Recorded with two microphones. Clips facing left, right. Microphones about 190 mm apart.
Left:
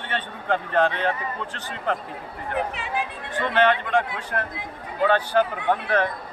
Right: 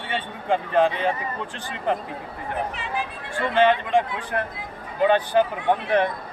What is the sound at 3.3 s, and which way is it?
Speech, 10° right (ahead or behind).